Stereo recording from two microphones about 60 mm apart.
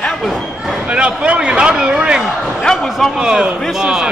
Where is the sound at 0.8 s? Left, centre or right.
Centre.